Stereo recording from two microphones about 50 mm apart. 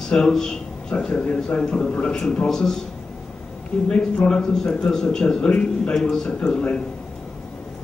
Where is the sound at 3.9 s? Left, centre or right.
Centre.